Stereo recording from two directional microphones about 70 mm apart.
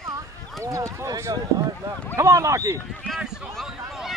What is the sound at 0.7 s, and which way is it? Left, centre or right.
Speech, right.